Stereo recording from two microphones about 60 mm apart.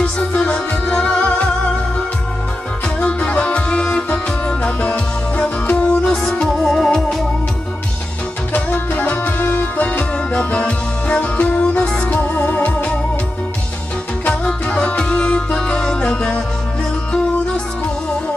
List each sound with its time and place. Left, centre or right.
0.0 s music: left
3.0 s music: centre
6.4 s organ: centre
8.5 s music: left
14.2 s music: left